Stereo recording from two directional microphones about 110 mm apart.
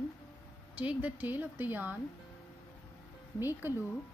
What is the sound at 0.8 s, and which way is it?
A woman's voice, 15° right (ahead or behind).